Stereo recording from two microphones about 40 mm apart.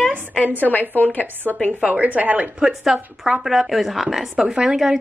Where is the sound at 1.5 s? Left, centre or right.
Left.